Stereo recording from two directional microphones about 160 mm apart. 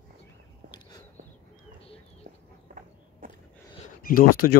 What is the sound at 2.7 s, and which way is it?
Walk, 60° right (ahead or behind).